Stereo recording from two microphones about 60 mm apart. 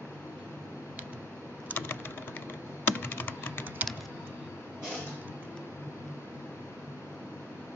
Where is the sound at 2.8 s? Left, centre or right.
Left.